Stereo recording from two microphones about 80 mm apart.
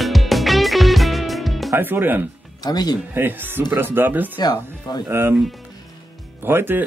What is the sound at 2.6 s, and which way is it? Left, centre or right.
Speech, left.